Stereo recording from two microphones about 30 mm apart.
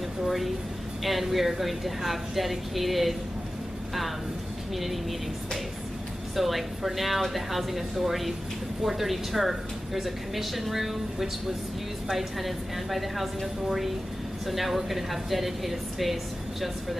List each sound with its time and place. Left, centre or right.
0.2 s a sound: centre
1.0 s speech: centre
4.7 s speech: centre
6.3 s speech: centre